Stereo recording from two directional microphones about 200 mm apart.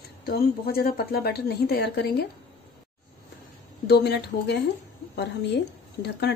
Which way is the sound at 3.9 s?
55° left (ahead or behind).